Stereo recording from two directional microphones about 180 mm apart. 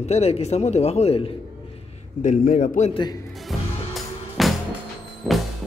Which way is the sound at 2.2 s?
45° left (ahead or behind).